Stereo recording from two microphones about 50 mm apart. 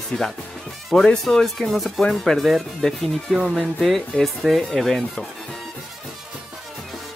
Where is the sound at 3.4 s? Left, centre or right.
Centre.